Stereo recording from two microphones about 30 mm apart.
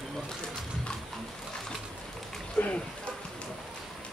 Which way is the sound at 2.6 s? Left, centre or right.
Left.